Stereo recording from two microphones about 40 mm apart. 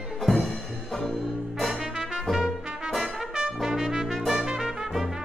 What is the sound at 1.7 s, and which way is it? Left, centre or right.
Music, centre.